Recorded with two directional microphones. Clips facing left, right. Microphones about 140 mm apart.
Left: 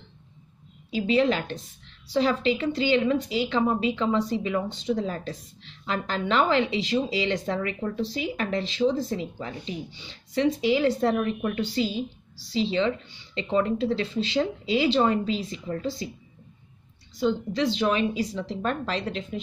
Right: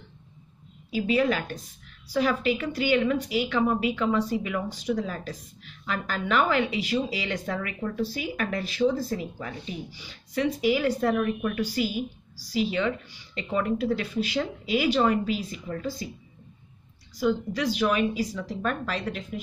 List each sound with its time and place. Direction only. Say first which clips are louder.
0.9 s a woman's voice: left 1 dB; 25° left (ahead or behind)
17.2 s a woman's voice: left 1 dB; 25° left (ahead or behind)